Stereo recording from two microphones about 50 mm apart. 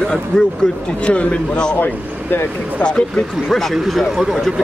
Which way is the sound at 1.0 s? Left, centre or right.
Left.